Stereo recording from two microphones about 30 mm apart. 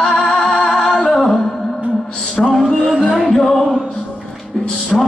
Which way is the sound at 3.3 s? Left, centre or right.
Centre.